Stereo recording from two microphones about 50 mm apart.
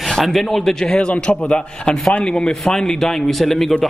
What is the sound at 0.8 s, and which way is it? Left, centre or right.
A man's voice, centre.